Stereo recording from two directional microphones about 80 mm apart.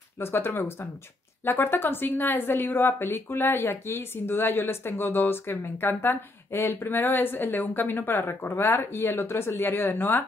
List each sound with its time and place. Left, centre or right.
0.2 s speech: left